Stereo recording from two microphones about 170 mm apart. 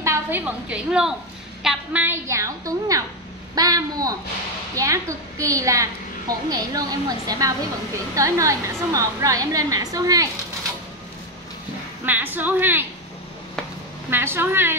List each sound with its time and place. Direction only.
0.0 s a woman's voice: 15° right (ahead or behind)
12.1 s a woman's voice: 10° right (ahead or behind)
14.1 s a woman's voice: 15° right (ahead or behind)